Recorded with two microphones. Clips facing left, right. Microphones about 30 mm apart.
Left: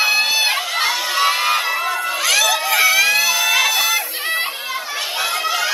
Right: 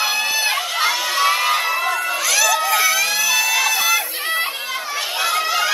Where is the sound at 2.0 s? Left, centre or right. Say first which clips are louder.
Left 3 dB; left.